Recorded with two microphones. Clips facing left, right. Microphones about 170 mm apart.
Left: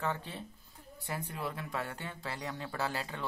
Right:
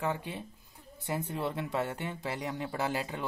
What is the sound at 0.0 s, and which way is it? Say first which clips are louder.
Speech: right 3 dB; 15° right (ahead or behind).